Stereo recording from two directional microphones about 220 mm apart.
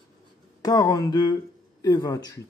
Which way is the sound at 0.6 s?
15° left (ahead or behind).